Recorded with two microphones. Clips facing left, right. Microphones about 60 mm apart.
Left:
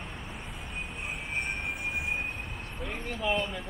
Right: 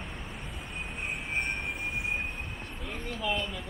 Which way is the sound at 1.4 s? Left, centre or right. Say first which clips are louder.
Even; centre.